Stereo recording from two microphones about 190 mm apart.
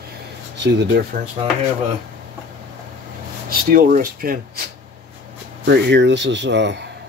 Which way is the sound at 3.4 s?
45° right (ahead or behind).